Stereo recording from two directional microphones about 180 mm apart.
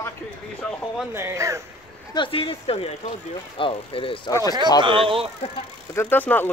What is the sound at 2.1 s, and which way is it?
Speech, 30° left (ahead or behind).